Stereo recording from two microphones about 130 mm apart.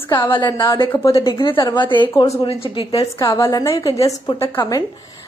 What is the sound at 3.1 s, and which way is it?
A woman's voice, 25° left (ahead or behind).